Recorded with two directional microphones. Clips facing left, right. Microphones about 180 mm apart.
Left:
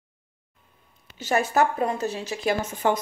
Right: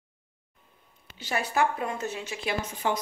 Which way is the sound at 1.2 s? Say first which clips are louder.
Left 5 dB; 45° left (ahead or behind).